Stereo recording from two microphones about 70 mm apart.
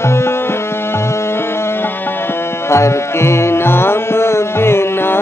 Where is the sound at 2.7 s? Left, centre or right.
Left.